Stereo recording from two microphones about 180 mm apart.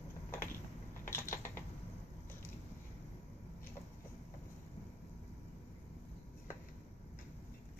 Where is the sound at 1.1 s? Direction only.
15° left (ahead or behind).